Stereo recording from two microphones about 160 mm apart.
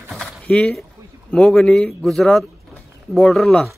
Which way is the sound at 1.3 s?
5° left (ahead or behind).